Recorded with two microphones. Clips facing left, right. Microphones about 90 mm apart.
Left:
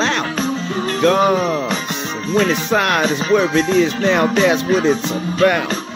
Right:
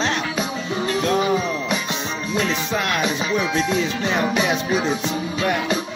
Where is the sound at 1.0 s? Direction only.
60° left (ahead or behind).